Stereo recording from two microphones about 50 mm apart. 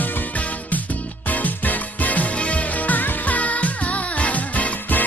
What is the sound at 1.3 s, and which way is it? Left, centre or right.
Music, left.